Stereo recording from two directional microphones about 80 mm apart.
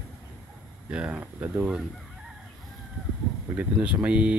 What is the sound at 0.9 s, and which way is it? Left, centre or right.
Speech, centre.